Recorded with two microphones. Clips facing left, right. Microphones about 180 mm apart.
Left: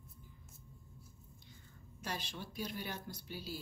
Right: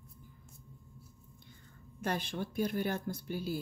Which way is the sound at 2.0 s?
55° right (ahead or behind).